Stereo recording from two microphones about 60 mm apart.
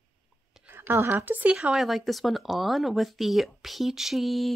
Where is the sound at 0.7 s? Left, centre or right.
Right.